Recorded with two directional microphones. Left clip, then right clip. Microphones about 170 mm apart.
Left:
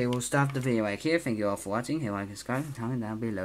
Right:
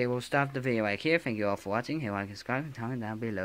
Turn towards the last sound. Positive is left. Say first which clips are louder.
# left 1 dB
turn(degrees=-20)  # may be behind; listen again after turning